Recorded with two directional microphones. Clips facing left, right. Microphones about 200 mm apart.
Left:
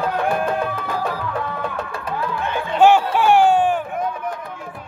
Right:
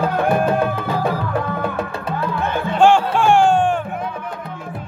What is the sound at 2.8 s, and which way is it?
Music, 10° left (ahead or behind).